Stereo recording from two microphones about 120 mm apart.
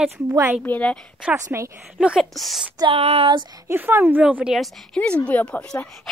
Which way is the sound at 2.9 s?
55° right (ahead or behind).